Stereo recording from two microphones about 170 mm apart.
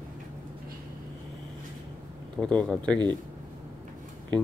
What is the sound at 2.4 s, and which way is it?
Speech, 5° left (ahead or behind).